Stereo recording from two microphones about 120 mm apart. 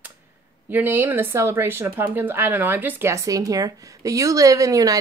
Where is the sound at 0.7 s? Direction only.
15° right (ahead or behind).